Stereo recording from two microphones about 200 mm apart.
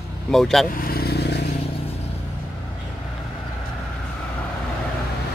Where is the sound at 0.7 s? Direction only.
45° left (ahead or behind).